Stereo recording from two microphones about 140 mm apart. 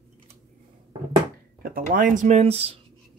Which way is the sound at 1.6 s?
85° right.